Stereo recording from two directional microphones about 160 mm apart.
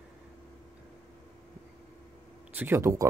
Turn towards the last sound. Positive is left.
turn(degrees=-15)  # may be behind; listen again after turning